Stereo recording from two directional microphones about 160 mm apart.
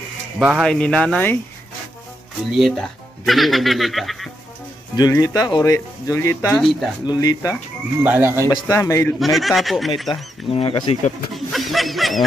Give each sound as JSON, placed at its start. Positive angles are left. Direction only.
{"t": 0.4, "sound": "speech", "side_deg": -5}
{"t": 2.5, "sound": "speech", "side_deg": 0}
{"t": 4.9, "sound": "speech", "side_deg": 25}
{"t": 6.5, "sound": "speech", "side_deg": 0}
{"t": 7.1, "sound": "speech", "side_deg": 25}
{"t": 8.0, "sound": "speech", "side_deg": -10}
{"t": 8.5, "sound": "speech", "side_deg": 20}
{"t": 9.2, "sound": "speech", "side_deg": 0}
{"t": 10.5, "sound": "speech", "side_deg": 35}
{"t": 11.3, "sound": "snicker", "side_deg": 0}